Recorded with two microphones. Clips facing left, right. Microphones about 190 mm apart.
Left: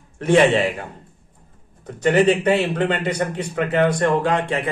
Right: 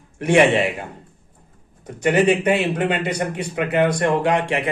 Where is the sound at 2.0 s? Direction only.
15° right (ahead or behind).